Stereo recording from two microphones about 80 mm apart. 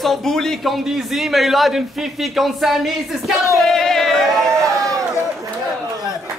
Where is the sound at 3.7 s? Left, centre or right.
Centre.